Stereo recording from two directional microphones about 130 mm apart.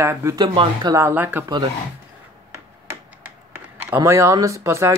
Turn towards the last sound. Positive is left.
turn(degrees=-20)  # may be behind; listen again after turning